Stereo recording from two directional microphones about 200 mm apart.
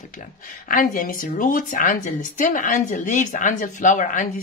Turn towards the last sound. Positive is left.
turn(degrees=40)  # may be behind; listen again after turning